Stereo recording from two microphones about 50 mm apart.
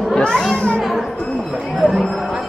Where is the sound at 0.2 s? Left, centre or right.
Centre.